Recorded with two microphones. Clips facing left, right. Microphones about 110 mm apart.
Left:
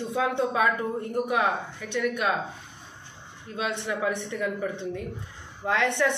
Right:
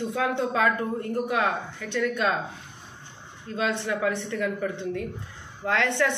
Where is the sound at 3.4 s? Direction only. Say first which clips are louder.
Right 3 dB; 15° left (ahead or behind).